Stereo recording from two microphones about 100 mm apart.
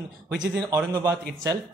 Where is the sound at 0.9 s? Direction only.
35° right (ahead or behind).